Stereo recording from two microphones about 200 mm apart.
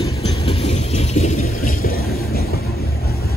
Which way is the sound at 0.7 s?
35° left (ahead or behind).